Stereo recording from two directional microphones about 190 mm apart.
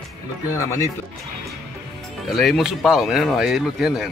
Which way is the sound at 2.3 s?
Centre (ahead or behind).